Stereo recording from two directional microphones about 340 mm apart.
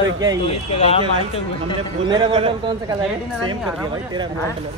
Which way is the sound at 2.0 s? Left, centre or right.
Centre.